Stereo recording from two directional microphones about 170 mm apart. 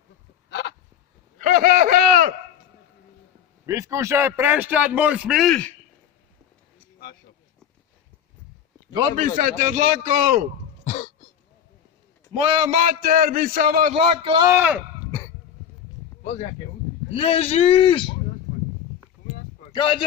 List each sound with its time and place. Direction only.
0.5 s a sound: 85° left
1.4 s a sound: 60° right (ahead or behind)
3.6 s a man's voice: 20° right (ahead or behind); by 5.8 s 5° left (ahead or behind)
9.1 s a man's voice: 50° right (ahead or behind)
12.4 s a man's voice: 40° right (ahead or behind); by 13.9 s 60° right (ahead or behind)
13.9 s a man's voice: 30° right (ahead or behind)
14.5 s a man's voice: 10° right (ahead or behind)
17.1 s speech: 35° left (ahead or behind)
19.7 s speech: 30° left (ahead or behind)